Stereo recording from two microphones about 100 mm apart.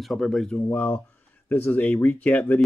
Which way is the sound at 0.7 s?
15° left (ahead or behind).